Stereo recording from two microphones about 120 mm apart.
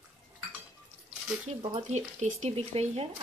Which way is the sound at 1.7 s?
75° right (ahead or behind).